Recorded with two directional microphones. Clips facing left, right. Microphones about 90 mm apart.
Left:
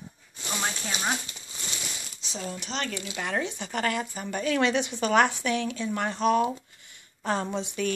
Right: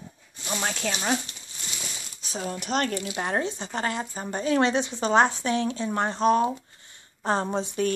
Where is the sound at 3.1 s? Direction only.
35° right (ahead or behind).